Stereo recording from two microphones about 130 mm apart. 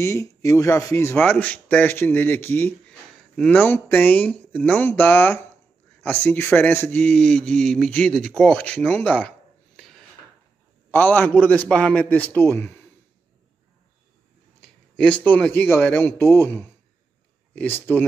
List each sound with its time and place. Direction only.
0.0 s speech: 25° left (ahead or behind)
10.9 s speech: 15° left (ahead or behind)
14.6 s a man's voice: 10° left (ahead or behind)